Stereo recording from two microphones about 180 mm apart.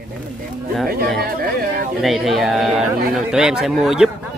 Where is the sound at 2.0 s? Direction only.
Centre (ahead or behind).